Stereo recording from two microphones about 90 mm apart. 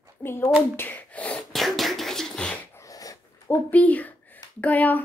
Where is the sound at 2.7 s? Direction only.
40° left (ahead or behind).